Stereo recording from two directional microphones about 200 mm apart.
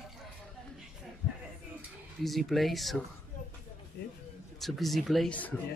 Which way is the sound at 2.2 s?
Centre (ahead or behind).